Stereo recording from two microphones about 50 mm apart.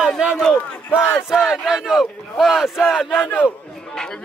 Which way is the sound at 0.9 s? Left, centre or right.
Left.